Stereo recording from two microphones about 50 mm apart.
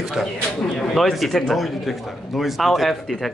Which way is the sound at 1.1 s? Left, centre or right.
Centre.